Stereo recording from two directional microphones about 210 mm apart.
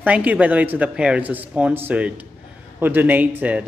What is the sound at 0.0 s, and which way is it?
Speech, 5° right (ahead or behind).